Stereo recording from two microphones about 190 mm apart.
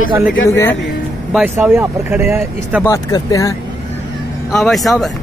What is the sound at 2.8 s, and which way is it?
Speech, 15° left (ahead or behind).